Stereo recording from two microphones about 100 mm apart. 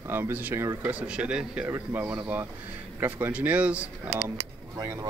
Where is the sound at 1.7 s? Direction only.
25° right (ahead or behind).